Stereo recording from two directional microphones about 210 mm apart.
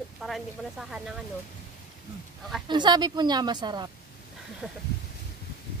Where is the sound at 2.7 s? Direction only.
20° right (ahead or behind).